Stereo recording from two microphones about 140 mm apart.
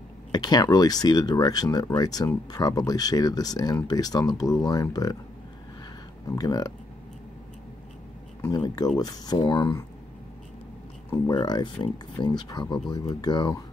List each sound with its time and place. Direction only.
0.3 s speech: 30° left (ahead or behind)
6.2 s speech: 25° left (ahead or behind)
8.4 s speech: 25° left (ahead or behind)
11.2 s speech: 30° left (ahead or behind)